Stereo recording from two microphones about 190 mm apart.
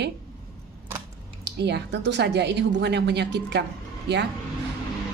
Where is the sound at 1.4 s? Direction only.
65° right (ahead or behind).